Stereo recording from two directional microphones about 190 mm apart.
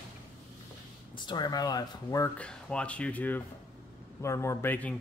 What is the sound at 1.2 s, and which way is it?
Speech, 20° left (ahead or behind).